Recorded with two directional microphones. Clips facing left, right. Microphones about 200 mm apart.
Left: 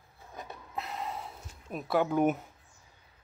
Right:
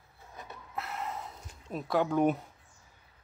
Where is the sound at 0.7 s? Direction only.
15° left (ahead or behind).